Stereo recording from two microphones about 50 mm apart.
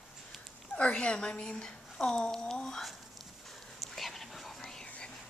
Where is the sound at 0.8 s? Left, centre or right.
Left.